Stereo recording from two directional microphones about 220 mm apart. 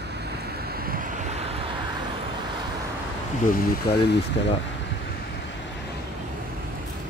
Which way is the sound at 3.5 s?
50° left (ahead or behind).